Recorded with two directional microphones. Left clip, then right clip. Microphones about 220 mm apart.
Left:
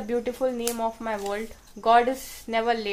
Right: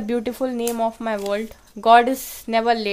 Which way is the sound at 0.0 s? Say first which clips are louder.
Right 2 dB; 50° right (ahead or behind).